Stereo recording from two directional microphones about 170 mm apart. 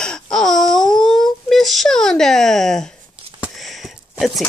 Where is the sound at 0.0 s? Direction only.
5° left (ahead or behind).